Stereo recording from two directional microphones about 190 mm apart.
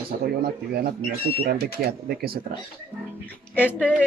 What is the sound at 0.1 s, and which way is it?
Speech, 55° right (ahead or behind).